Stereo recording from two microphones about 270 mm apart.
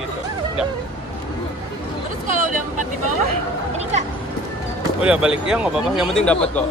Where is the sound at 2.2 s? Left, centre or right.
Right.